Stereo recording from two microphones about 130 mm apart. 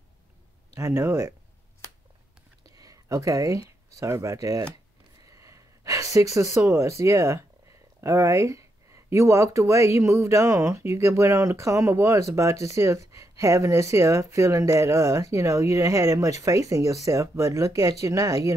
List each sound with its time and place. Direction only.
0.7 s speech: 20° right (ahead or behind)
2.6 s speech: 25° right (ahead or behind)
5.2 s a sound: 25° right (ahead or behind)
8.0 s speech: 20° right (ahead or behind)